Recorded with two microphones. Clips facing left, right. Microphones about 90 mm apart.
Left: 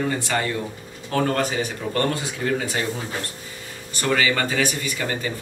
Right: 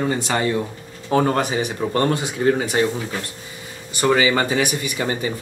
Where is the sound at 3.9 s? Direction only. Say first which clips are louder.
Right 4 dB; 20° right (ahead or behind).